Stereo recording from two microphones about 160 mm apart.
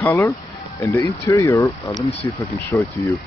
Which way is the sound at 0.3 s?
20° left (ahead or behind).